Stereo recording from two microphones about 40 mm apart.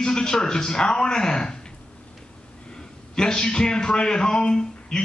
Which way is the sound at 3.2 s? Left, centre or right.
Centre.